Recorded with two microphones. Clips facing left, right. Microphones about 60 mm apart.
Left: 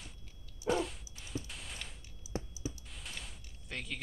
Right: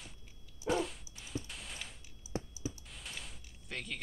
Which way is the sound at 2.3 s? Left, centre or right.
Right.